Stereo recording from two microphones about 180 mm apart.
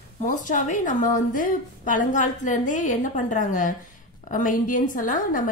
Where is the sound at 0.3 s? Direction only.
45° left (ahead or behind).